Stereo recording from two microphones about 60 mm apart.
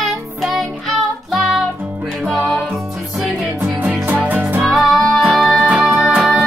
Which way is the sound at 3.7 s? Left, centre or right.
Right.